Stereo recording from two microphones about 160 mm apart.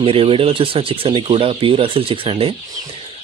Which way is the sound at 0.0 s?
35° right (ahead or behind).